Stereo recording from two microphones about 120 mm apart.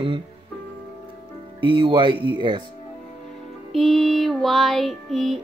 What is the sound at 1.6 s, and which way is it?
Speech, 40° right (ahead or behind).